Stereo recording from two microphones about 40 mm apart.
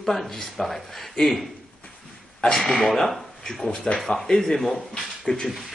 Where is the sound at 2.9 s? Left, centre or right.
Centre.